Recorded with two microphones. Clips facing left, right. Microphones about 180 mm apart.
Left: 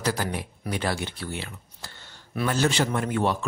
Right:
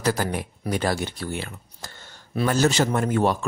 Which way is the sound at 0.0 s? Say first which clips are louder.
Right 3 dB; 50° right (ahead or behind).